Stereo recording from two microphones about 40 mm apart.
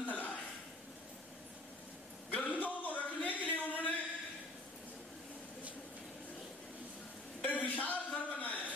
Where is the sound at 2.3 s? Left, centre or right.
Left.